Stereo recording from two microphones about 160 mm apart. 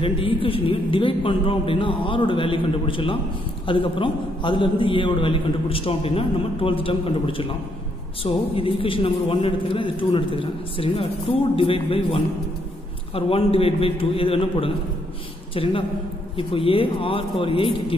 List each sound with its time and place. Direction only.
0.0 s a man's voice: 35° left (ahead or behind)